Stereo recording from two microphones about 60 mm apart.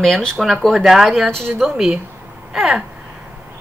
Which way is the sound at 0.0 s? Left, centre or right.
Centre.